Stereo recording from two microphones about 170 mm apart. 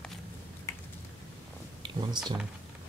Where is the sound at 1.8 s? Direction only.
25° right (ahead or behind).